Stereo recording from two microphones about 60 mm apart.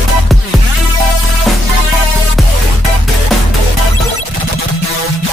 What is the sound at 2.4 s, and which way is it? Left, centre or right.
Music, centre.